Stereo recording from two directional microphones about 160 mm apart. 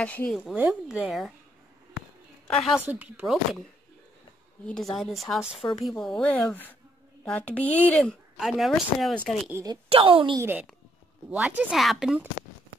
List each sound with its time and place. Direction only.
0.0 s speech: 10° left (ahead or behind)
0.4 s speech: 10° right (ahead or behind)
2.4 s a woman's voice: centre (ahead or behind)
2.9 s speech: 10° right (ahead or behind)
4.6 s speech: centre (ahead or behind)
9.5 s a woman's voice: 20° right (ahead or behind)
9.8 s a woman's voice: 35° right (ahead or behind)
11.2 s speech: 5° right (ahead or behind)